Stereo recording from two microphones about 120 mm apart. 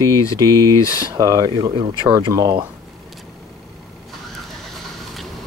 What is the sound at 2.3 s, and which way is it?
Speech, 25° right (ahead or behind).